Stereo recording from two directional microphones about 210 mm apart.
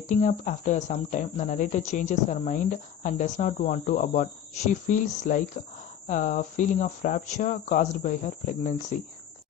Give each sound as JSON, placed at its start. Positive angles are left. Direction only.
{"t": 0.1, "sound": "speech", "side_deg": 35}